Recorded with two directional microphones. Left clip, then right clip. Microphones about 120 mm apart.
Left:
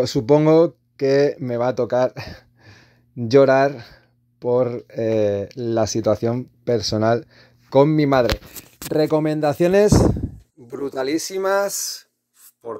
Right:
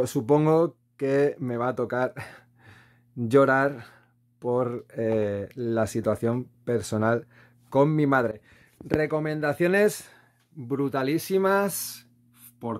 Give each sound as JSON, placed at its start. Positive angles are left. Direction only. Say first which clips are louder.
{"t": 0.0, "sound": "speech", "louder": "left 6 dB", "side_deg": 20}
{"t": 9.0, "sound": "speech", "louder": "left 9 dB", "side_deg": 60}
{"t": 10.7, "sound": "speech", "louder": "left 3 dB", "side_deg": 60}